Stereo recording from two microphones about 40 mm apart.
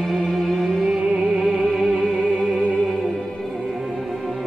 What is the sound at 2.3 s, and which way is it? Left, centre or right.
Music, centre.